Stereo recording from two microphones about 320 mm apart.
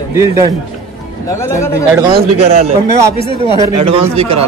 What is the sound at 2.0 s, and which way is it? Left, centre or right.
Speech, centre.